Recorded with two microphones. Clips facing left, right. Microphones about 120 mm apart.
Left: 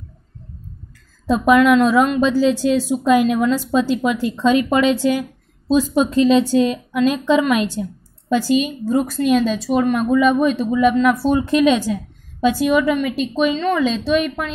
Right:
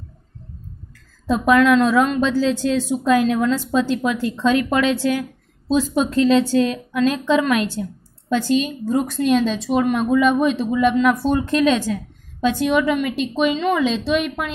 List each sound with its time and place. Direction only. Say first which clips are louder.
1.4 s a woman's voice: left 2 dB; 15° left (ahead or behind)
11.3 s a woman's voice: left 2 dB; 10° left (ahead or behind)